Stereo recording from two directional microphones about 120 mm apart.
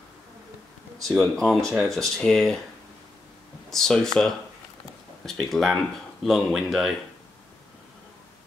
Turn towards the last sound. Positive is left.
turn(degrees=0)  # may be behind; listen again after turning